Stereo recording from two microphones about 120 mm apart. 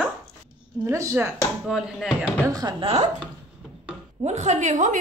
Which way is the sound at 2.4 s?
30° right (ahead or behind).